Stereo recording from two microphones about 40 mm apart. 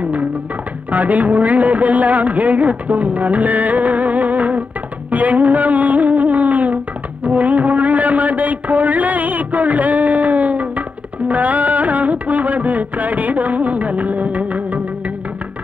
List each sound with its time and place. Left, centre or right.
0.9 s a woman's voice: right
5.1 s music: right